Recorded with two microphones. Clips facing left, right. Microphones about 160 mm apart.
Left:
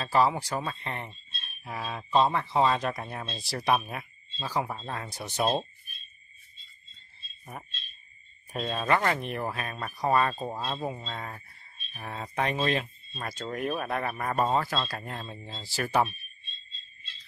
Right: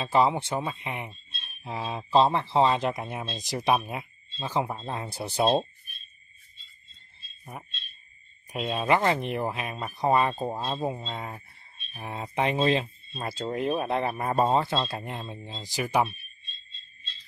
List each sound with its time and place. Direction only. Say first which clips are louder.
0.0 s speech: right 2 dB; 20° right (ahead or behind)
1.6 s speech: right 3 dB; 25° right (ahead or behind)
8.5 s speech: right 2 dB; 15° right (ahead or behind)